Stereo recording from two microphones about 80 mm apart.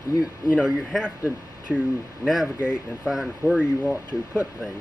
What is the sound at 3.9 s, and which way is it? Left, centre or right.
Speech, centre.